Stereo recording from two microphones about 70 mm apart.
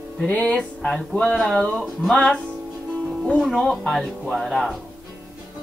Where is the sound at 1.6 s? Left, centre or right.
Centre.